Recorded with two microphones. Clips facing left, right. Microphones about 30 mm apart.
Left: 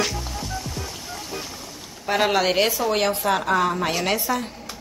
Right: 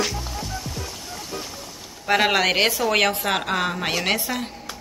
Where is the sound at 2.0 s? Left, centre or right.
Right.